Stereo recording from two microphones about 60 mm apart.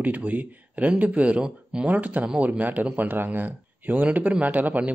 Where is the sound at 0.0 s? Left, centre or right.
Right.